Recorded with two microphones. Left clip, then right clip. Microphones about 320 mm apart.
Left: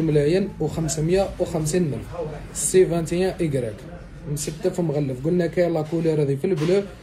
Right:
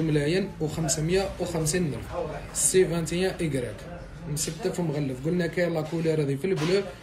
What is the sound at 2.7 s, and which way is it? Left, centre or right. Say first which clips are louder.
Speech: left 5 dB; left.